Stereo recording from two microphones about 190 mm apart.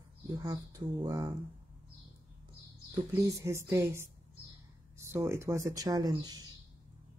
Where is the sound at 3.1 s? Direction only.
15° right (ahead or behind).